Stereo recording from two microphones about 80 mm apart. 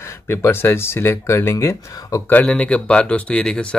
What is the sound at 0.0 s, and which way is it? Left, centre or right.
Speech, left.